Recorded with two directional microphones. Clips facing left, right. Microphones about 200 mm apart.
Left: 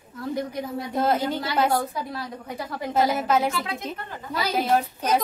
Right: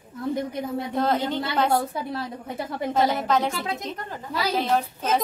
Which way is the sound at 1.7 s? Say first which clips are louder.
Right 1 dB; 25° right (ahead or behind).